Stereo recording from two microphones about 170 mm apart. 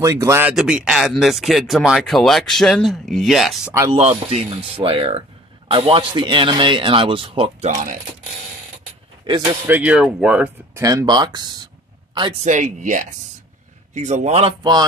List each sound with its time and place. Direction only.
0.0 s speech: 15° right (ahead or behind); by 3.7 s centre (ahead or behind)
3.9 s speech: 35° right (ahead or behind)
9.7 s speech: 10° right (ahead or behind)
10.8 s speech: 20° right (ahead or behind)
12.4 s speech: 45° right (ahead or behind)
14.6 s speech: 25° right (ahead or behind)